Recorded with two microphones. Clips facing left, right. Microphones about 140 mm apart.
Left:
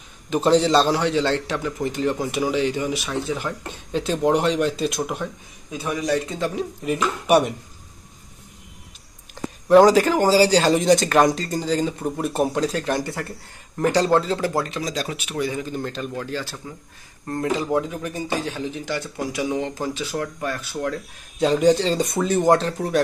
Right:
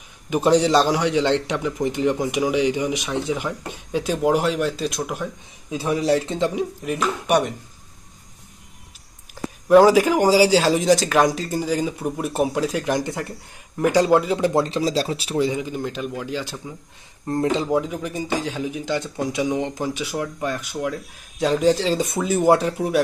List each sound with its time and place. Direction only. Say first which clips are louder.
0.3 s a man's voice: even; 15° right (ahead or behind)
5.7 s speech: right 4 dB; 30° right (ahead or behind)
6.8 s speech: even; centre (ahead or behind)
9.3 s a man's voice: right 1 dB; 5° right (ahead or behind); by 15.6 s 25° right (ahead or behind)
15.6 s a man's voice: right 1 dB; 15° right (ahead or behind)
17.3 s a man's voice: right 2 dB; 25° right (ahead or behind)
20.8 s speech: even; 5° right (ahead or behind)